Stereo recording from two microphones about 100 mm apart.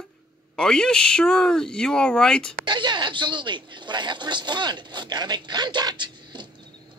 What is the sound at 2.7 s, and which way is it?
Speech, 50° right (ahead or behind).